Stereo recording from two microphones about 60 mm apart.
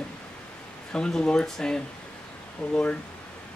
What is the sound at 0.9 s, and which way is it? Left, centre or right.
Speech, centre.